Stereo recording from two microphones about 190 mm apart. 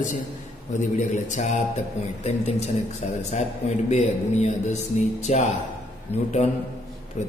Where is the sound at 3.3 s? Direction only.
40° left (ahead or behind).